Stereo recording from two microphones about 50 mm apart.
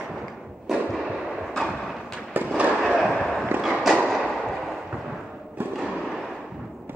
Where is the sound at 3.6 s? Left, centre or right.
Centre.